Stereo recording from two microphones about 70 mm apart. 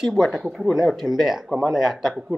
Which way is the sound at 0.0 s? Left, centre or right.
Centre.